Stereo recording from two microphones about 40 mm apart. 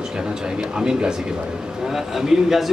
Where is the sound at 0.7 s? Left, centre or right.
Centre.